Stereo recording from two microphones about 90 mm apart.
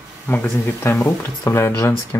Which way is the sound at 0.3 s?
20° left (ahead or behind).